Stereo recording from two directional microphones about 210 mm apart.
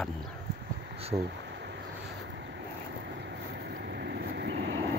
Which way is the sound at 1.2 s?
55° right (ahead or behind).